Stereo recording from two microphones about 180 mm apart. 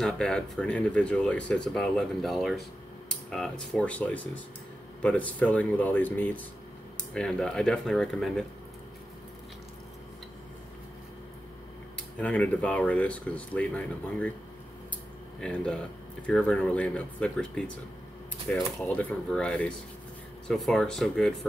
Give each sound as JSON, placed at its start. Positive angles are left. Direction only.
{"t": 0.0, "sound": "speech", "side_deg": 5}
{"t": 12.2, "sound": "speech", "side_deg": 10}
{"t": 16.3, "sound": "speech", "side_deg": 5}